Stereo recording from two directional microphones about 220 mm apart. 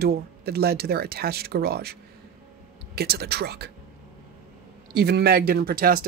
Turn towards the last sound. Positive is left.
turn(degrees=-40)  # may be behind; listen again after turning